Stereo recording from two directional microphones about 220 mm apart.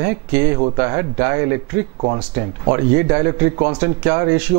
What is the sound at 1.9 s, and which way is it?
Speech, 30° right (ahead or behind).